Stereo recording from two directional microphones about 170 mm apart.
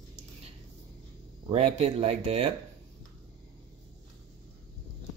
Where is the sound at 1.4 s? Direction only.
35° right (ahead or behind).